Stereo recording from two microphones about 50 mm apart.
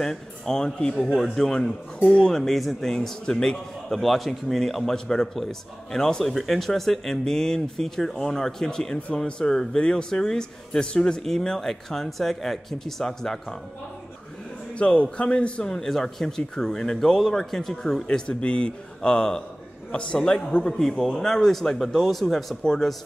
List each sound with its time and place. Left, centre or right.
0.0 s a man's voice: centre
14.8 s speech: left; by 18.0 s centre
18.0 s a man's voice: centre